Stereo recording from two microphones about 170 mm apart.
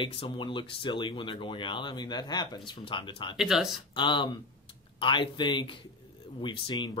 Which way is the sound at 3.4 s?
Centre (ahead or behind).